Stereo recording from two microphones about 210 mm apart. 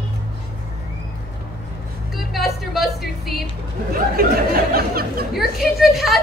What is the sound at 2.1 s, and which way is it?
Music, centre (ahead or behind).